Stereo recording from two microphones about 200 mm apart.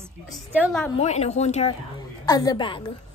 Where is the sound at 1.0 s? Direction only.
35° left (ahead or behind).